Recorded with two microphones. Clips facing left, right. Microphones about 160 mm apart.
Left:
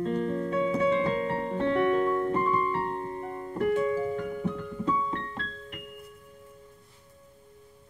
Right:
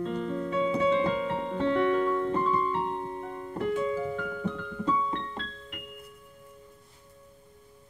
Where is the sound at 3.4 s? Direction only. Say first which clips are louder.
Left 3 dB; 50° left (ahead or behind).